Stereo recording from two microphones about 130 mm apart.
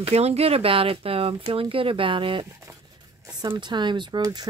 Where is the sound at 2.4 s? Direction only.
20° right (ahead or behind).